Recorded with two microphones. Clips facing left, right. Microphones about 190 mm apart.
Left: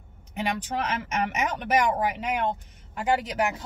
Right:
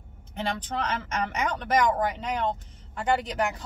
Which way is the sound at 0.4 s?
10° left (ahead or behind).